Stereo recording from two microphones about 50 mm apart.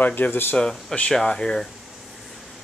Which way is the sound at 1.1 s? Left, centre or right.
Centre.